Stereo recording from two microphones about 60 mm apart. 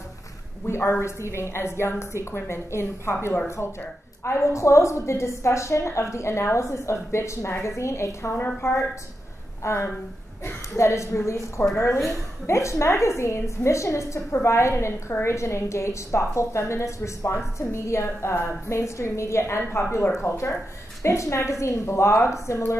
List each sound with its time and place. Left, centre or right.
0.7 s a woman's voice: left
4.2 s a woman's voice: left